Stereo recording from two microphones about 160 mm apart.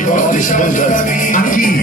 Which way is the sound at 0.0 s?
55° left (ahead or behind).